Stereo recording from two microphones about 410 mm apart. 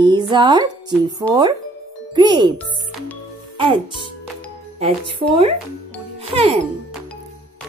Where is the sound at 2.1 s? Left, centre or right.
Centre.